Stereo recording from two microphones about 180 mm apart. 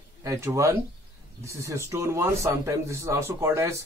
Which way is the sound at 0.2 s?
15° right (ahead or behind).